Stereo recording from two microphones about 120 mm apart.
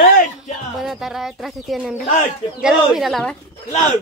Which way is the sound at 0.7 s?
Centre (ahead or behind).